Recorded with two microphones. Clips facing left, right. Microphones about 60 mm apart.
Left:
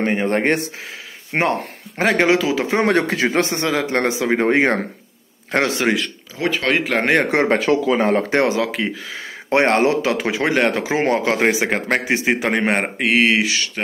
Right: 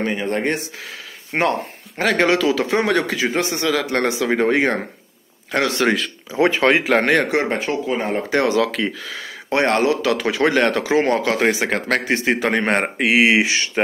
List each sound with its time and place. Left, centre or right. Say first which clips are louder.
0.0 s speech: left 3 dB; left
1.3 s speech: even; left
3.2 s speech: left 2 dB; left
3.7 s speech: left 1 dB; left
5.9 s speech: even; centre
6.3 s speech: right 5 dB; right
6.6 s speech: right 1 dB; centre
7.4 s speech: left 5 dB; left
8.3 s speech: even; left
12.4 s speech: even; centre
13.3 s speech: right 1 dB; right